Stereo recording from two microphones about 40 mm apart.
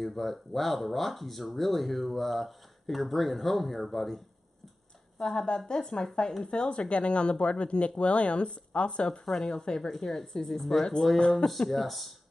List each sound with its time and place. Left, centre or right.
0.0 s speech: centre
5.2 s speech: centre
9.2 s speech: centre
11.1 s speech: left
11.7 s speech: centre